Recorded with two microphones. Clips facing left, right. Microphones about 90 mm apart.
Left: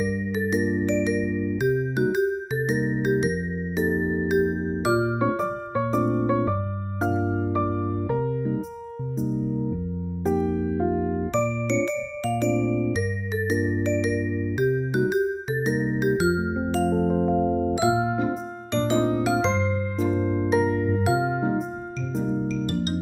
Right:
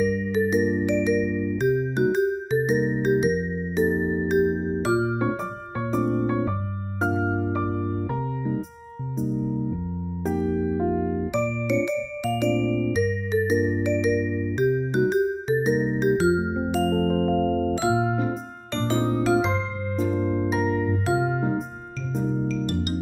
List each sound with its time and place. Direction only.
0.0 s music: 5° left (ahead or behind)
7.2 s music: 15° right (ahead or behind)
7.6 s music: centre (ahead or behind)
9.2 s music: centre (ahead or behind)
10.9 s music: 30° left (ahead or behind)
11.3 s music: 10° right (ahead or behind)
12.4 s music: 15° left (ahead or behind)
12.9 s music: centre (ahead or behind)
16.8 s music: 15° left (ahead or behind)
17.1 s music: 5° left (ahead or behind)
19.4 s music: 10° right (ahead or behind)
20.2 s music: 20° left (ahead or behind)
20.4 s music: centre (ahead or behind)